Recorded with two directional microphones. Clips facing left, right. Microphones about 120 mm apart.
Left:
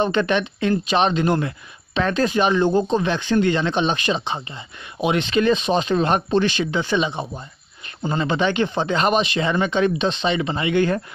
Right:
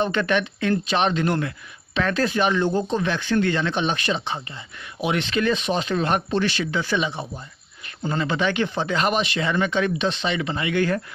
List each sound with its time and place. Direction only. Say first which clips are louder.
0.0 s speech: left 2 dB; 20° left (ahead or behind)